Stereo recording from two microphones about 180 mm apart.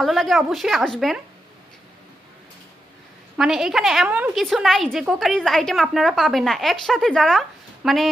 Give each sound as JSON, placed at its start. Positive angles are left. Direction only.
{"t": 0.0, "sound": "a woman's voice", "side_deg": 0}
{"t": 3.3, "sound": "a woman's voice", "side_deg": -5}